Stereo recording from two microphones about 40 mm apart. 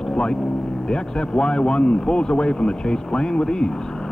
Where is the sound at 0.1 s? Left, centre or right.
Centre.